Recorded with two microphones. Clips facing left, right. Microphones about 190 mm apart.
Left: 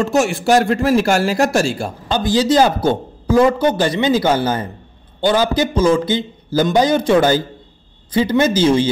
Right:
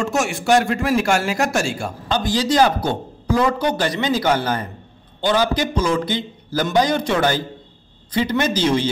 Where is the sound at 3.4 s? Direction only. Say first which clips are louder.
Left 6 dB; 25° left (ahead or behind).